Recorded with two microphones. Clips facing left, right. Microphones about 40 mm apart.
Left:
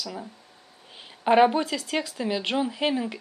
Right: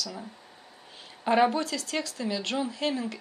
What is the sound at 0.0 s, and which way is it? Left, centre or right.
Speech, centre.